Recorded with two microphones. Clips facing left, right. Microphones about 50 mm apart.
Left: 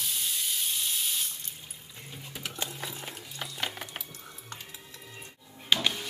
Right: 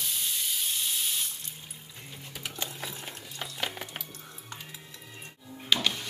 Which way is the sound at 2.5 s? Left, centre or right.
Centre.